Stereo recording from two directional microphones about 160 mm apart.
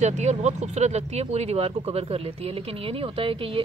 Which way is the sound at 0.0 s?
45° right (ahead or behind).